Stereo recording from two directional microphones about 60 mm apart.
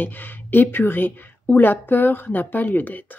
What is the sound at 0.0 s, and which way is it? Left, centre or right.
Speech, left.